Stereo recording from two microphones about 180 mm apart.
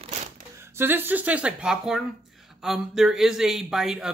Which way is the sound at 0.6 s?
15° right (ahead or behind).